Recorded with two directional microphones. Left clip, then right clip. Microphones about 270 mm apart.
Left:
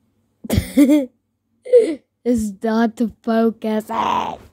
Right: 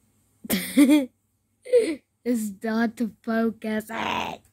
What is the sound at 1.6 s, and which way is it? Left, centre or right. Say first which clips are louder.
A woman's voice: left 7 dB; centre.